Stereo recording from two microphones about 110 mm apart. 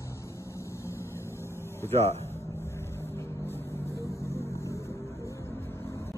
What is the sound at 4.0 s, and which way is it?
Vehicle, 25° left (ahead or behind).